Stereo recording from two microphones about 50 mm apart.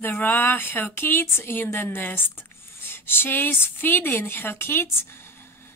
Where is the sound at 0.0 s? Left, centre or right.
Left.